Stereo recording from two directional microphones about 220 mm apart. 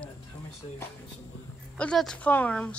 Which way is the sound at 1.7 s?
5° left (ahead or behind).